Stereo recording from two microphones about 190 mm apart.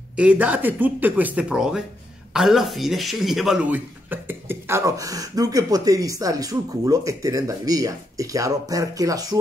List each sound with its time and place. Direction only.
0.1 s speech: 5° right (ahead or behind)